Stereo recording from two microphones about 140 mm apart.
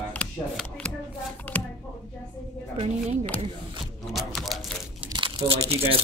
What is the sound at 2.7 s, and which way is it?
Speech, 45° right (ahead or behind).